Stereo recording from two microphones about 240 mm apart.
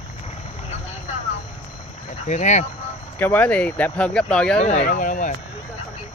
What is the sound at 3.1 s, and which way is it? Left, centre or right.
Speech, centre.